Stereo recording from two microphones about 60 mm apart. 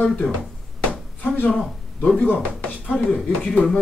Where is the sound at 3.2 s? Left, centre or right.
Centre.